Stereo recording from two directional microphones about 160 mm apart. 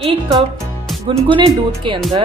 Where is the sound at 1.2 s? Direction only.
30° right (ahead or behind).